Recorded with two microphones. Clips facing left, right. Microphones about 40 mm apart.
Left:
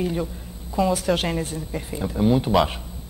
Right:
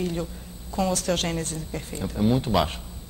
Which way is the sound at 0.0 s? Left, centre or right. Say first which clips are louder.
Left 3 dB; centre.